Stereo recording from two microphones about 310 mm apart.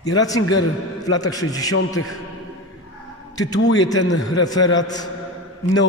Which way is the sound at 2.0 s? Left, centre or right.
Left.